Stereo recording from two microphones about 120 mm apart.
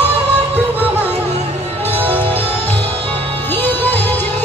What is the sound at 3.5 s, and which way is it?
Music, 15° left (ahead or behind).